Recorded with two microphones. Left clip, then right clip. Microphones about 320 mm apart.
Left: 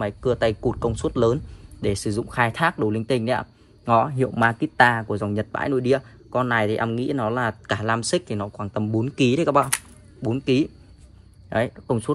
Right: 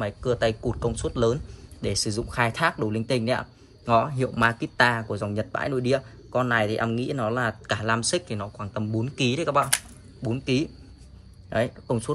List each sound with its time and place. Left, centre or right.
0.0 s a man's voice: centre